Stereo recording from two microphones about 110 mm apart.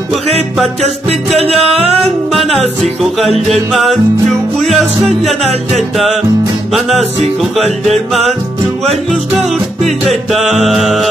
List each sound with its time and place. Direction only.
0.8 s music: 70° right (ahead or behind)
3.0 s music: centre (ahead or behind)
10.3 s music: centre (ahead or behind)